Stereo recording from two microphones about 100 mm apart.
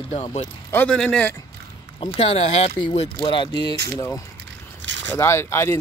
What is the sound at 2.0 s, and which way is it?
Speech, 80° left.